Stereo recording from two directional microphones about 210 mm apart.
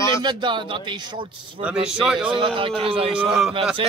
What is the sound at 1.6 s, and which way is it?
Speech, 5° right (ahead or behind).